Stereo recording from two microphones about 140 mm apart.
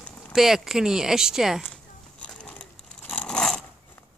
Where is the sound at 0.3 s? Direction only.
Centre (ahead or behind).